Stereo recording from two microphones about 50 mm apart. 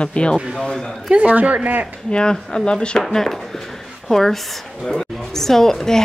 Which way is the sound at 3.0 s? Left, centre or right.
Centre.